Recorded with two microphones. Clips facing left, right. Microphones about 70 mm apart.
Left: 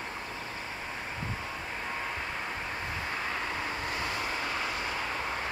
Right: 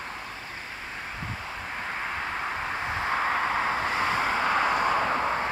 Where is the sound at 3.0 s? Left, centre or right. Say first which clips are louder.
Right 10 dB; right.